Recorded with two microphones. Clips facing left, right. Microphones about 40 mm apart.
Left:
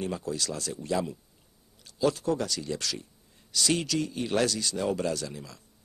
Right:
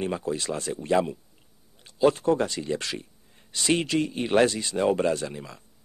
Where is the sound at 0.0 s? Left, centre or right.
Right.